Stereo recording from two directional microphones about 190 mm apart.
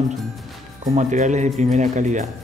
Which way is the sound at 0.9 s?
40° right (ahead or behind).